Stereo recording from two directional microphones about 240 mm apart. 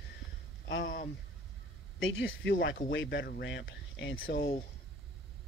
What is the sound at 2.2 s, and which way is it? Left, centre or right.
Speech, left.